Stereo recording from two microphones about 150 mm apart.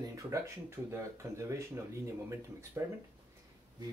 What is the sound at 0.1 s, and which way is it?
Speech, 20° right (ahead or behind).